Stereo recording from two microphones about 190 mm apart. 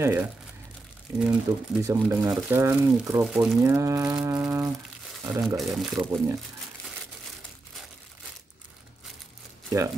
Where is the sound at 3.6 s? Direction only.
15° right (ahead or behind).